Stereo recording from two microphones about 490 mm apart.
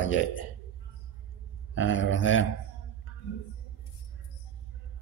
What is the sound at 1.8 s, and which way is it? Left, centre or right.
Speech, left.